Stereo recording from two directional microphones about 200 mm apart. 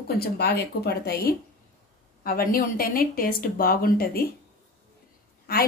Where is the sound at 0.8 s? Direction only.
50° left (ahead or behind).